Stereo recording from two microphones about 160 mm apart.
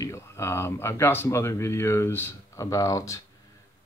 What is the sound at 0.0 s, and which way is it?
Speech, 15° left (ahead or behind).